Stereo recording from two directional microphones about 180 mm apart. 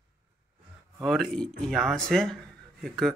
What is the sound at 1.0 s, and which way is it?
Speech, centre (ahead or behind).